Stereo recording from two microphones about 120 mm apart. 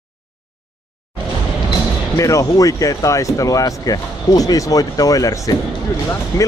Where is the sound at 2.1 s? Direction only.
25° left (ahead or behind).